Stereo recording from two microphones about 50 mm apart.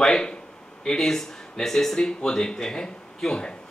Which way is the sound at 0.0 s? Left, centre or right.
Centre.